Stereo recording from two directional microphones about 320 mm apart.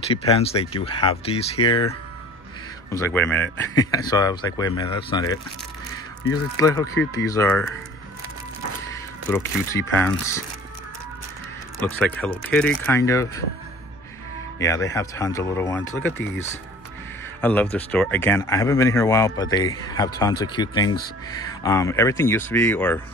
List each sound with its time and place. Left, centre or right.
0.1 s speech: centre
6.6 s speech: centre
9.3 s speech: centre
11.8 s speech: centre
14.6 s speech: centre
17.4 s speech: centre